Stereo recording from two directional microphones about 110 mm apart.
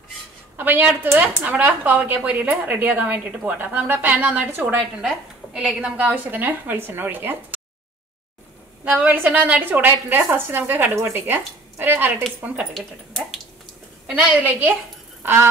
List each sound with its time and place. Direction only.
0.6 s a woman's voice: 15° right (ahead or behind)
8.8 s a woman's voice: 15° right (ahead or behind)
14.0 s a woman's voice: 10° right (ahead or behind)